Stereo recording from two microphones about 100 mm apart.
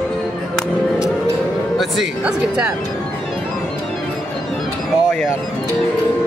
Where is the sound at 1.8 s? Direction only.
5° right (ahead or behind).